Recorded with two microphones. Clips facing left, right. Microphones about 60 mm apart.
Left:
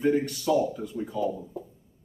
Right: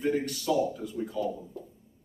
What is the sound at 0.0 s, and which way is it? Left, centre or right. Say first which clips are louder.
Speech: left 4 dB; centre.